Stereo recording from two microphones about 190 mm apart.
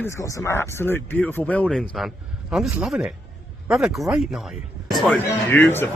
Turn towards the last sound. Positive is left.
turn(degrees=10)  # may be behind; listen again after turning